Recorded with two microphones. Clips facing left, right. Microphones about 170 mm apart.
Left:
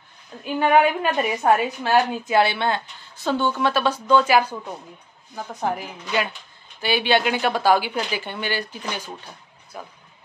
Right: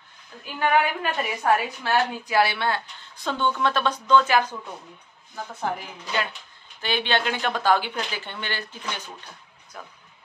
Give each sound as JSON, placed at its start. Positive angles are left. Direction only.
{"t": 0.6, "sound": "a woman's voice", "side_deg": 25}
{"t": 3.2, "sound": "speech", "side_deg": 5}